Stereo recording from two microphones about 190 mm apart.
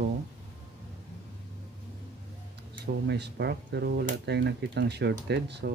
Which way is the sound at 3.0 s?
60° right (ahead or behind).